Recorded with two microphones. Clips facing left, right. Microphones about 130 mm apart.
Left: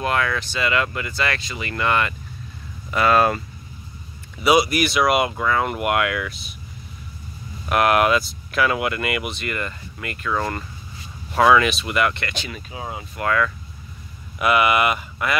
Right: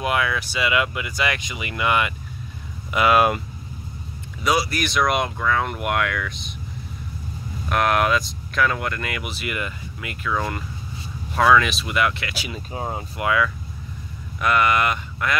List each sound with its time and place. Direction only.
0.0 s speech: 10° right (ahead or behind)
4.6 s speech: 15° left (ahead or behind)
4.8 s speech: 5° left (ahead or behind)
7.7 s speech: 5° left (ahead or behind)
12.7 s speech: 40° right (ahead or behind)
13.2 s speech: 10° right (ahead or behind)
14.4 s speech: 10° left (ahead or behind)